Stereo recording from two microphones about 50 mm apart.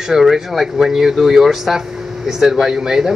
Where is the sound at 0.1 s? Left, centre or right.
Centre.